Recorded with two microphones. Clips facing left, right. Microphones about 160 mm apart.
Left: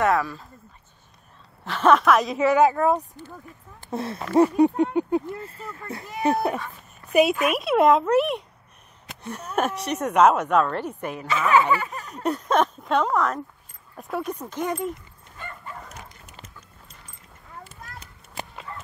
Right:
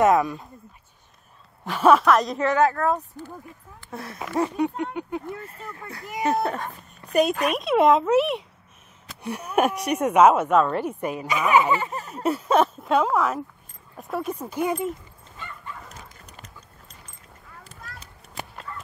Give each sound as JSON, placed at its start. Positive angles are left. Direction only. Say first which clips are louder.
{"t": 0.0, "sound": "speech", "louder": "right 3 dB", "side_deg": -20}
{"t": 1.6, "sound": "speech", "louder": "right 1 dB", "side_deg": -10}
{"t": 3.9, "sound": "speech", "louder": "left 7 dB", "side_deg": 25}
{"t": 9.2, "sound": "speech", "louder": "right 3 dB", "side_deg": -10}
{"t": 12.1, "sound": "speech", "louder": "right 2 dB", "side_deg": -5}
{"t": 15.4, "sound": "dog", "louder": "left 1 dB", "side_deg": 50}